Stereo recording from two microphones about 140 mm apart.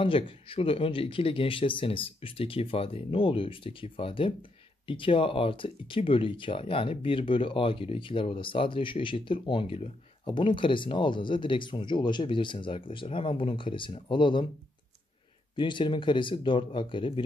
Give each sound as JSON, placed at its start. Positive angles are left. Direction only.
{"t": 0.0, "sound": "speech", "side_deg": 40}
{"t": 15.5, "sound": "speech", "side_deg": 35}